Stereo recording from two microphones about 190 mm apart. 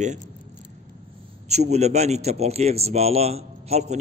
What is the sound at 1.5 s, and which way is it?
A man's voice, 35° right (ahead or behind).